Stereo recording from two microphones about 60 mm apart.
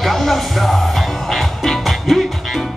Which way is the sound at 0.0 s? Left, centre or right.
Centre.